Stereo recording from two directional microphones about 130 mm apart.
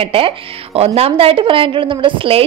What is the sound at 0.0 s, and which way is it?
A woman's voice, 45° right (ahead or behind).